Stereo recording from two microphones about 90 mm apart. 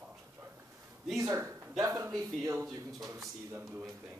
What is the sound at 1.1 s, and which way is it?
Speech, 35° right (ahead or behind).